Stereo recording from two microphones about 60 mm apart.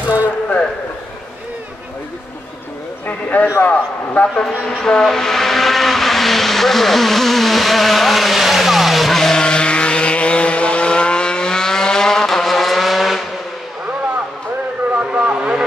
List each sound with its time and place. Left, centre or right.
3.1 s a man's voice: left
4.4 s vehicle: centre
15.0 s vehicle: centre